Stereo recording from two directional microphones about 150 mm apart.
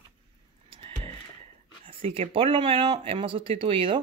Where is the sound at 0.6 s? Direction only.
40° right (ahead or behind).